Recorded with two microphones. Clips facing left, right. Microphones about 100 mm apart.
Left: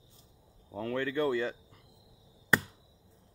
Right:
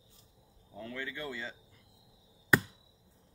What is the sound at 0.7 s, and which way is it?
Speech, 55° left (ahead or behind).